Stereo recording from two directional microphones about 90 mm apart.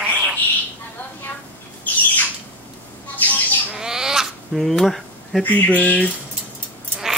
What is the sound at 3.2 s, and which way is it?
Bird, 20° left (ahead or behind).